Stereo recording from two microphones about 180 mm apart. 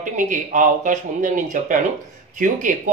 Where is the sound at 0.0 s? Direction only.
45° right (ahead or behind).